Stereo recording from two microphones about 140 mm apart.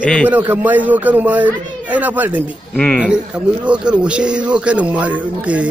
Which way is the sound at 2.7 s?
5° left (ahead or behind).